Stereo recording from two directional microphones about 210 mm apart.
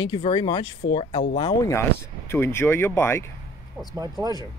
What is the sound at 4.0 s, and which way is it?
Speech, 15° right (ahead or behind).